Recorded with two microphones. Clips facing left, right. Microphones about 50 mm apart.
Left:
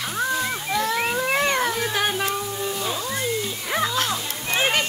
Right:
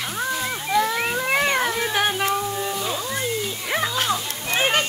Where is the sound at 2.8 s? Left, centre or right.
Centre.